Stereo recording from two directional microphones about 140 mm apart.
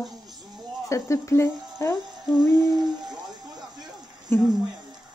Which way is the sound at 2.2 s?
5° right (ahead or behind).